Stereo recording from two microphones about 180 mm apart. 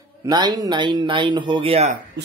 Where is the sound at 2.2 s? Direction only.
70° right (ahead or behind).